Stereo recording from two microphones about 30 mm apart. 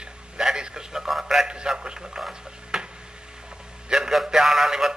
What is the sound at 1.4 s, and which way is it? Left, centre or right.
Speech, right.